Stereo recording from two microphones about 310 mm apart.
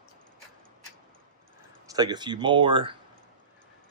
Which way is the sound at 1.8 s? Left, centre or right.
Centre.